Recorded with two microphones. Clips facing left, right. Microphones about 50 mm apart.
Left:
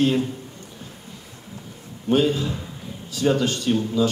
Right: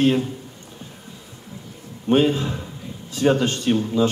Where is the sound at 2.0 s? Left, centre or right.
Right.